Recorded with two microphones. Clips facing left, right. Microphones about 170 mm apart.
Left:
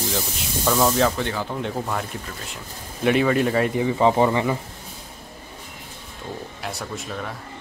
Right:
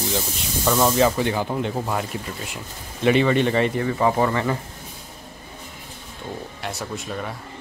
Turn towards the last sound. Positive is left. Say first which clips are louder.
# right 1 dB
turn(degrees=0)  # may be behind; listen again after turning